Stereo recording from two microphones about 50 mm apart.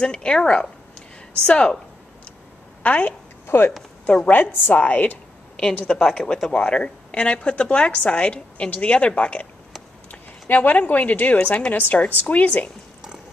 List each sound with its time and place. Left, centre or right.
0.0 s speech: centre
2.8 s speech: left
3.4 s speech: left
4.1 s speech: left
4.7 s speech: left
5.9 s a woman's voice: centre; by 9.5 s left
10.5 s speech: left